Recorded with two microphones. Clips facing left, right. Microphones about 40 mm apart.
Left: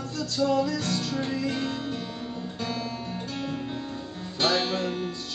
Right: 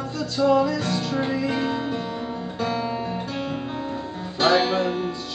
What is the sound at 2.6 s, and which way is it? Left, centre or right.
Guitar, centre.